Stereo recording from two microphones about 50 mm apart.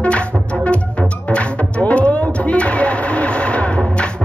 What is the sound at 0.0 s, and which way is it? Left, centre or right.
Music, left.